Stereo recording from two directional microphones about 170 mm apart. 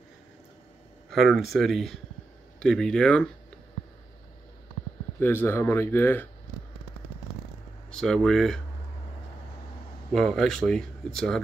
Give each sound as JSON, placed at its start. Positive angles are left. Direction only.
{"t": 1.1, "sound": "speech", "side_deg": 0}
{"t": 5.2, "sound": "speech", "side_deg": 10}
{"t": 7.9, "sound": "speech", "side_deg": 5}
{"t": 10.1, "sound": "speech", "side_deg": 5}